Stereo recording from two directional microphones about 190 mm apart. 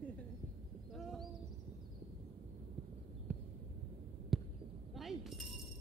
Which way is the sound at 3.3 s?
5° right (ahead or behind).